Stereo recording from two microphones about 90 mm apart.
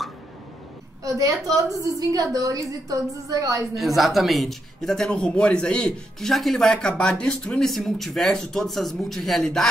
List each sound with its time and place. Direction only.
1.0 s a woman's voice: 40° right (ahead or behind)
3.7 s a man's voice: centre (ahead or behind)